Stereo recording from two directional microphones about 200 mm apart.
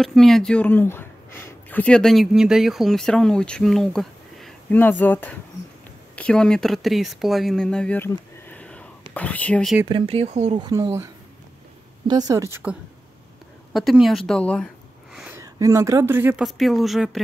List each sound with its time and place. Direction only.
0.0 s speech: centre (ahead or behind)
9.8 s speech: 25° right (ahead or behind)
10.6 s speech: 20° right (ahead or behind)
12.1 s a woman's voice: 20° right (ahead or behind)
13.7 s speech: centre (ahead or behind)
15.1 s speech: 10° right (ahead or behind)